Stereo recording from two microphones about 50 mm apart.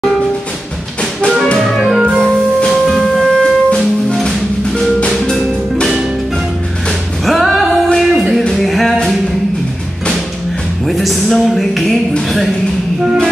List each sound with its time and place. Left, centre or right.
1.7 s music: centre
2.1 s music: centre
2.7 s music: centre
7.2 s music: centre
10.9 s a sound: centre